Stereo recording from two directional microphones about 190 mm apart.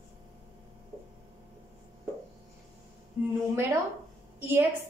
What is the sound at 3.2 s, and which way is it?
Speech, 10° right (ahead or behind).